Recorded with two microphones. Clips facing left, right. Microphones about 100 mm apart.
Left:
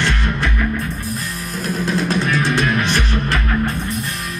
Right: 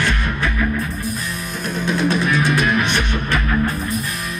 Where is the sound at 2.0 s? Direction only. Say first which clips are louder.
Right 3 dB; 35° left (ahead or behind).